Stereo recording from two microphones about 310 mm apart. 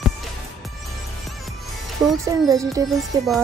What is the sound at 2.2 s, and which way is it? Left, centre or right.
Speech, centre.